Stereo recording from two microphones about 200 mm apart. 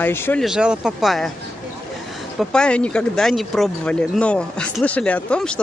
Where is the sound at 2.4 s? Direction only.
5° left (ahead or behind).